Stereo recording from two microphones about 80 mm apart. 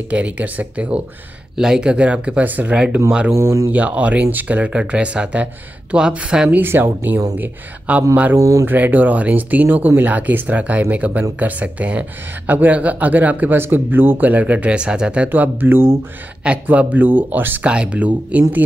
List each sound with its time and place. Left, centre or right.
0.1 s speech: centre
3.3 s speech: right
3.7 s speech: centre
6.5 s speech: right
8.4 s speech: right
8.6 s speech: right
15.2 s speech: right